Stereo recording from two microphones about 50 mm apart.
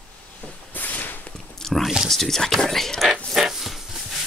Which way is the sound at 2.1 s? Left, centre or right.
Centre.